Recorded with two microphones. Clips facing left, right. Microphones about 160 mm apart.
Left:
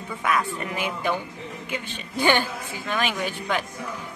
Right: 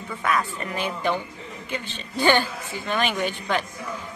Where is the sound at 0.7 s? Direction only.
10° left (ahead or behind).